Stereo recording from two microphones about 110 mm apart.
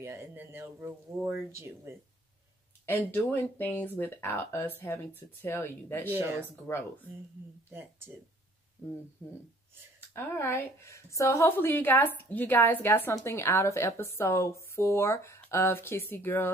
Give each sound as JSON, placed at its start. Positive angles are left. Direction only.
{"t": 0.0, "sound": "speech", "side_deg": -25}
{"t": 2.9, "sound": "a woman's voice", "side_deg": 20}
{"t": 6.0, "sound": "speech", "side_deg": -20}
{"t": 7.7, "sound": "speech", "side_deg": -20}
{"t": 9.9, "sound": "a woman's voice", "side_deg": 20}